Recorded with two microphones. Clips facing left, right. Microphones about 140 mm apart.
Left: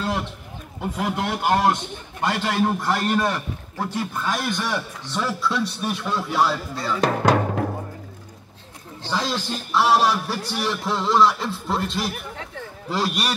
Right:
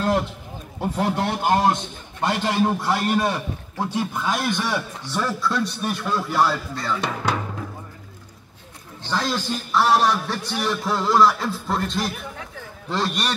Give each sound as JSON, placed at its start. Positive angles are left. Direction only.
{"t": 0.9, "sound": "a man's voice", "side_deg": -30}
{"t": 1.4, "sound": "a man's voice", "side_deg": -20}
{"t": 7.0, "sound": "speech", "side_deg": 45}
{"t": 9.1, "sound": "a man's voice", "side_deg": 0}